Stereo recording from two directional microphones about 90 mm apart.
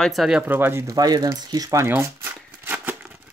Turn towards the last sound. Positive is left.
turn(degrees=-25)  # may be behind; listen again after turning